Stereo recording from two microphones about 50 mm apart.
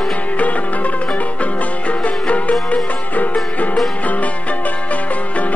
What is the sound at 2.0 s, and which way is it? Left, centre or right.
Music, left.